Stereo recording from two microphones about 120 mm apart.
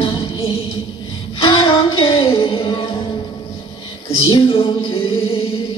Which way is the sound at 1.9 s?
50° left (ahead or behind).